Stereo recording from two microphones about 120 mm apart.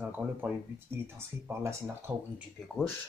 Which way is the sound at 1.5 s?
25° right (ahead or behind).